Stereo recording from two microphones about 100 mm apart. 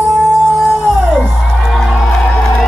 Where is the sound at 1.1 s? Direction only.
Centre (ahead or behind).